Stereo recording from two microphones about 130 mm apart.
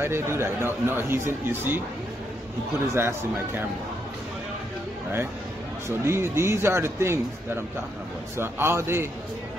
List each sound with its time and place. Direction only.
0.0 s speech: 20° right (ahead or behind)
2.9 s speech: 20° right (ahead or behind)
5.9 s speech: 20° right (ahead or behind)
8.4 s speech: 20° right (ahead or behind)